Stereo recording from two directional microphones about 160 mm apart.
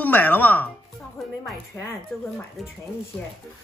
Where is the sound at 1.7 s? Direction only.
20° left (ahead or behind).